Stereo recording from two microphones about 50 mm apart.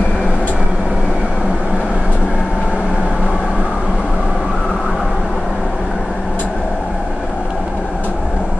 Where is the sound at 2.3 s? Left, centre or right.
Centre.